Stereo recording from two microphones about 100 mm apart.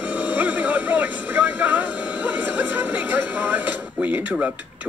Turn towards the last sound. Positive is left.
turn(degrees=-20)  # may be behind; listen again after turning